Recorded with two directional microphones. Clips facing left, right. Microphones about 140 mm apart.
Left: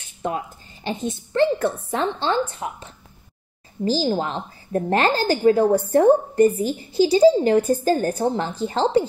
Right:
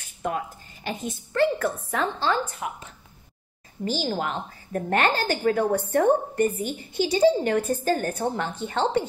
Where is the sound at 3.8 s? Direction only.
30° left (ahead or behind).